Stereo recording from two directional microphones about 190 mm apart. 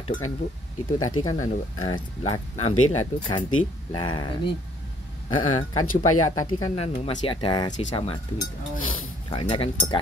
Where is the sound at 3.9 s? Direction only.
25° left (ahead or behind).